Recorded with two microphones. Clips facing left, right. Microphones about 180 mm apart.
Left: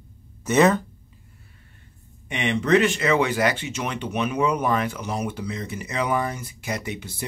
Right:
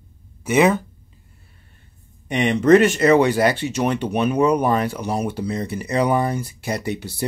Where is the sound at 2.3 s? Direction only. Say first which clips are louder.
Right 6 dB; 40° right (ahead or behind).